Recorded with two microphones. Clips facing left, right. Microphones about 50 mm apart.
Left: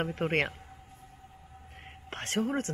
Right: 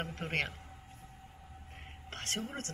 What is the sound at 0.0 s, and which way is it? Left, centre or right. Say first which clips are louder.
Speech: left 7 dB; left.